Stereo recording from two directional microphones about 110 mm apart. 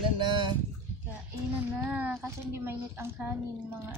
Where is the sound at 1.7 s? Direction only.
15° right (ahead or behind).